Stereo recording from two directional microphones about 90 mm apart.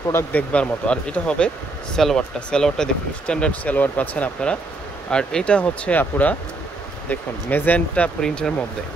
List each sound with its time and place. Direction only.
0.1 s speech: 15° left (ahead or behind)